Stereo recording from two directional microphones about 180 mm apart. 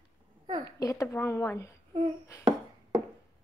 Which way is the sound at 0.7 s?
20° left (ahead or behind).